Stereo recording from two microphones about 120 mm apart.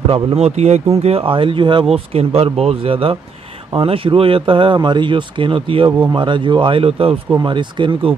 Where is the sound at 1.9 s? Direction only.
55° right (ahead or behind).